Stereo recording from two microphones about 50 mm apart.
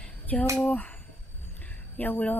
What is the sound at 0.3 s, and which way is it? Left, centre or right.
Speech, left.